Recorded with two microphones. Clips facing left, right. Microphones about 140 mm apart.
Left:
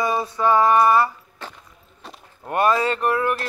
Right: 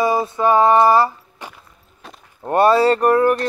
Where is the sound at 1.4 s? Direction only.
15° right (ahead or behind).